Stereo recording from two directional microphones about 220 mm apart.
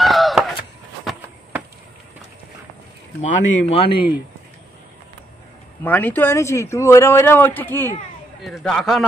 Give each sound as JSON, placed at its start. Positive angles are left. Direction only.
{"t": 0.0, "sound": "a sound", "side_deg": 0}
{"t": 3.2, "sound": "speech", "side_deg": 30}
{"t": 5.9, "sound": "a man's voice", "side_deg": 10}